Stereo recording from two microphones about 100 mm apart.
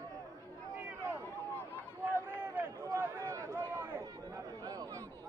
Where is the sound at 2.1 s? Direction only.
25° right (ahead or behind).